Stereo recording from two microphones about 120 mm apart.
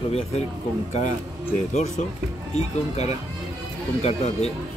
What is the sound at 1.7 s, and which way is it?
Speech, 90° left.